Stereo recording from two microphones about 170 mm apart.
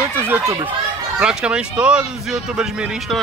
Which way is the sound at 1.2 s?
5° right (ahead or behind).